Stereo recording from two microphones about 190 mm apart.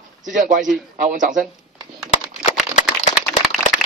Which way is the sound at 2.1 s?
35° left (ahead or behind).